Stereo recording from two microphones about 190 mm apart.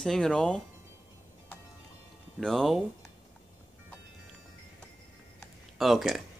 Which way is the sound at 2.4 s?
Centre (ahead or behind).